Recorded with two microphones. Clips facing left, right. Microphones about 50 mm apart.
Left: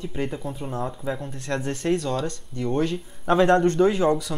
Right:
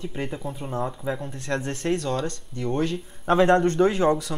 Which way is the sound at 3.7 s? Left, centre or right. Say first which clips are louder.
Left 1 dB; right.